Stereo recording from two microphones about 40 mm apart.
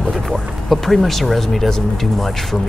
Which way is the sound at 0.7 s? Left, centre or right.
Centre.